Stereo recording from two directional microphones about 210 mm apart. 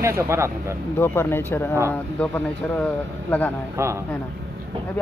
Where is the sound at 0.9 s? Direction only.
10° left (ahead or behind).